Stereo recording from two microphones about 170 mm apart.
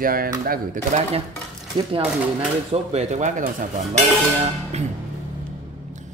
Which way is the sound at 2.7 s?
40° right (ahead or behind).